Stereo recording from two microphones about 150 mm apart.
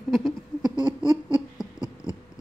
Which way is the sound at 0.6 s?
30° right (ahead or behind).